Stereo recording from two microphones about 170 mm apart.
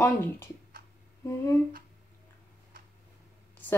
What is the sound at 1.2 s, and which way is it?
Speech, 15° left (ahead or behind).